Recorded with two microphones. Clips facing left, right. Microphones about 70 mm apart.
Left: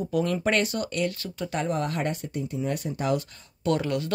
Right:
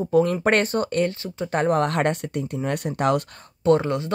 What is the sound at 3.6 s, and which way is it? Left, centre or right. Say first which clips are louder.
Speech: right 6 dB; right.